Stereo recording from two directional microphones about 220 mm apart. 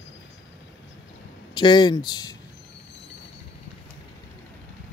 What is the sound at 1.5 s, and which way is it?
Speech, 20° left (ahead or behind).